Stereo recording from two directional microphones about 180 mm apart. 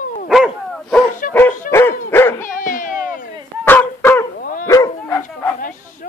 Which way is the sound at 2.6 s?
45° left (ahead or behind).